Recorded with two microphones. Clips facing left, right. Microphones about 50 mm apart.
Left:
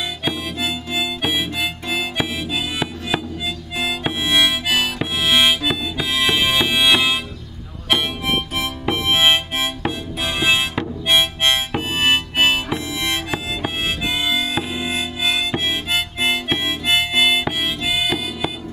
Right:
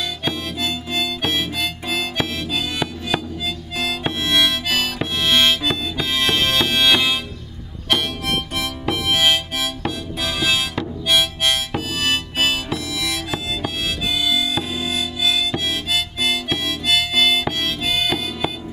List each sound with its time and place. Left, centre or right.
0.2 s music: centre
3.7 s harmonica: centre
7.9 s music: centre
12.7 s harmonica: left; by 18.5 s centre